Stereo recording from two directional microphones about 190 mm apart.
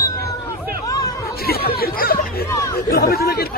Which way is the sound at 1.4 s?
55° left (ahead or behind).